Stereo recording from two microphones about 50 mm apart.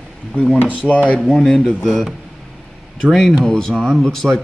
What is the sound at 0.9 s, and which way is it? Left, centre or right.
Speech, left.